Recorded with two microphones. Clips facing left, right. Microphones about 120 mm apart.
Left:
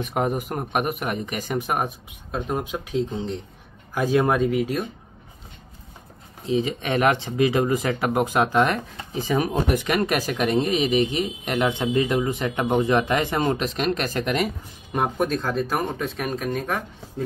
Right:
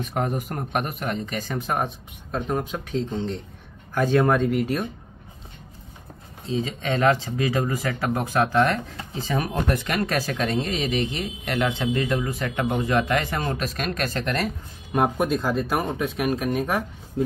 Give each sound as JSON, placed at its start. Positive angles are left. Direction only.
{"t": 0.0, "sound": "speech", "side_deg": 10}
{"t": 6.4, "sound": "speech", "side_deg": 15}
{"t": 15.0, "sound": "speech", "side_deg": -10}